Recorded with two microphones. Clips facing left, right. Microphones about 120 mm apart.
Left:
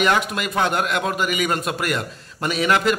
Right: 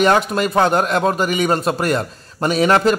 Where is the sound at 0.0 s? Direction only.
35° right (ahead or behind).